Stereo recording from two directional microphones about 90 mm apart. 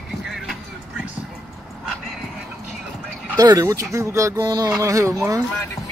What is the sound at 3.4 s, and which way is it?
Speech, 45° right (ahead or behind).